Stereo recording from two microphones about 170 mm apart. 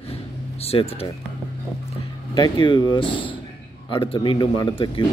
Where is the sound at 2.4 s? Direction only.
25° left (ahead or behind).